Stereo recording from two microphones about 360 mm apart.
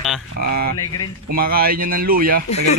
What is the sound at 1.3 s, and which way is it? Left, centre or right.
Speech, right.